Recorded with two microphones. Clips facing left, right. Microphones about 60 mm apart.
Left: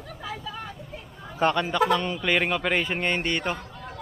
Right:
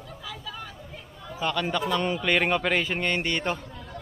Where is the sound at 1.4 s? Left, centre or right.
Left.